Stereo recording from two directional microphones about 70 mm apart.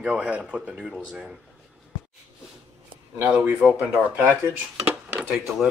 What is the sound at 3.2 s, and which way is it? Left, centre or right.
Speech, right.